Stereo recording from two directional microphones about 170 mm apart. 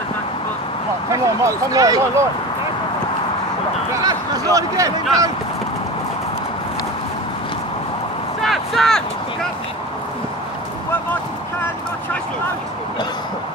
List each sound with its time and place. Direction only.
1.1 s speech: 20° right (ahead or behind)
4.0 s speech: 20° right (ahead or behind)
8.4 s a sound: centre (ahead or behind)